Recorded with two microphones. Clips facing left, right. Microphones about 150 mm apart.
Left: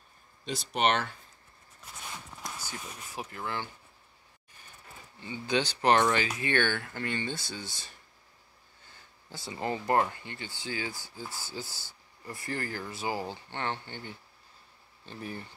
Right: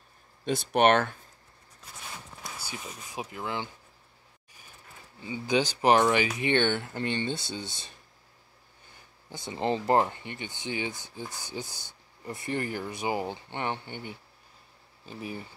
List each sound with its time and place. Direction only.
0.5 s speech: 55° right (ahead or behind)
2.4 s speech: 15° right (ahead or behind)
5.2 s speech: 10° right (ahead or behind)
9.3 s speech: 20° right (ahead or behind)